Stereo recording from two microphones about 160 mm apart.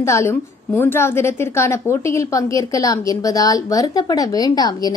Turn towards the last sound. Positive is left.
turn(degrees=25)  # may be behind; listen again after turning